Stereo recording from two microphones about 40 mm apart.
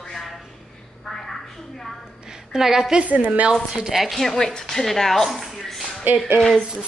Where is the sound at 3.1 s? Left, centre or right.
Right.